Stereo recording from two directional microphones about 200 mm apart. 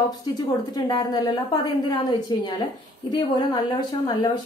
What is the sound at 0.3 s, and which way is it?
Speech, 20° left (ahead or behind).